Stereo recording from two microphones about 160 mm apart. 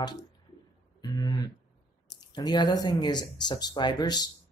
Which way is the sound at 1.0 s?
25° left (ahead or behind).